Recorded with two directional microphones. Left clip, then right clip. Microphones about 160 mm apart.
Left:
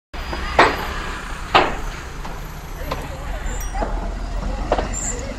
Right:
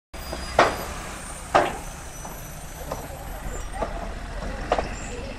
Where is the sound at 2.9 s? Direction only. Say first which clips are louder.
Left 6 dB; 60° right (ahead or behind).